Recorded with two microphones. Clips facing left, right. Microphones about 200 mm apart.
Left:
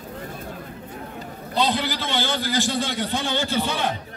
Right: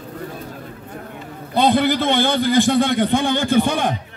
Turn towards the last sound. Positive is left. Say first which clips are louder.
# right 7 dB
turn(degrees=-50)  # may be behind; listen again after turning